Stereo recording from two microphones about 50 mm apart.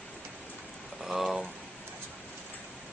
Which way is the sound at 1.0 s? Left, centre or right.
Centre.